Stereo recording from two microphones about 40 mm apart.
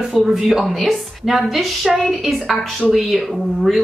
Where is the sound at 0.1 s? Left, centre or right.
Centre.